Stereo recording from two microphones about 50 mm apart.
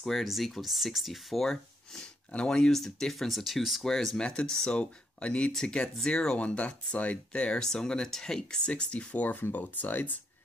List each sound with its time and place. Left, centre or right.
0.0 s speech: centre
2.3 s speech: centre
2.7 s speech: centre; by 10.1 s left